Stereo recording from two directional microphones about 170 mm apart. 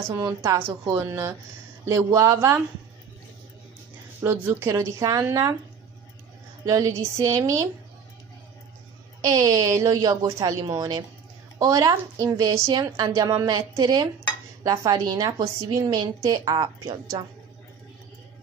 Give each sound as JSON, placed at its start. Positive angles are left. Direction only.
{"t": 0.1, "sound": "speech", "side_deg": -20}
{"t": 4.2, "sound": "speech", "side_deg": -15}
{"t": 6.6, "sound": "a woman's voice", "side_deg": -20}
{"t": 9.2, "sound": "a woman's voice", "side_deg": -20}